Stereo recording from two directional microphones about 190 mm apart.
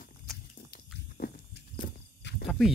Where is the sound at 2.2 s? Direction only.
65° left (ahead or behind).